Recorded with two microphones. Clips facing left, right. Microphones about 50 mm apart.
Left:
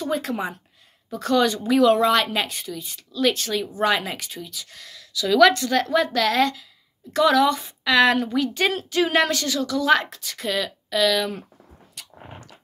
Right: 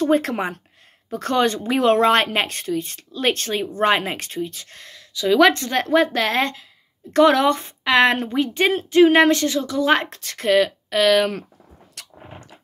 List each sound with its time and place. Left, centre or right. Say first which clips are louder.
0.0 s a woman's voice: right 6 dB; right
10.0 s speech: right 7 dB; right
12.0 s a sound: right 1 dB; right